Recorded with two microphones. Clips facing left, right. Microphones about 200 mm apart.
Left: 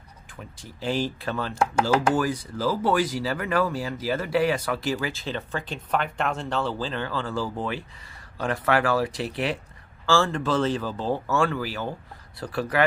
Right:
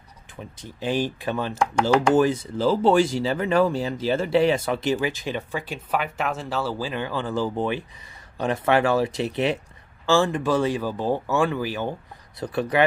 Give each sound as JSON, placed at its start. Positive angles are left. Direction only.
{"t": 0.4, "sound": "speech", "side_deg": -20}
{"t": 1.6, "sound": "speech", "side_deg": 5}
{"t": 2.1, "sound": "speech", "side_deg": -25}